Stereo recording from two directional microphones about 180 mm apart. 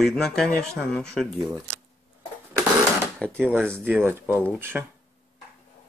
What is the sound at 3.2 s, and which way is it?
Speech, 5° left (ahead or behind).